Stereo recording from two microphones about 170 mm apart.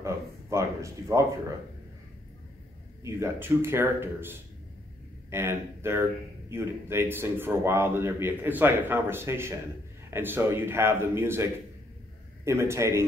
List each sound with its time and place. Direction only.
0.0 s a sound: 15° right (ahead or behind)
3.0 s a man's voice: 15° right (ahead or behind)
12.4 s a man's voice: 15° right (ahead or behind)